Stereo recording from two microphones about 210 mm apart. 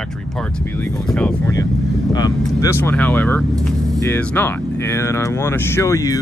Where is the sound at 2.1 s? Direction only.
15° left (ahead or behind).